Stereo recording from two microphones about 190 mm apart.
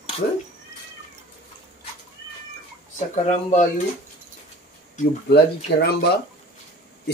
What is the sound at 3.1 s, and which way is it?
Speech, 40° left (ahead or behind).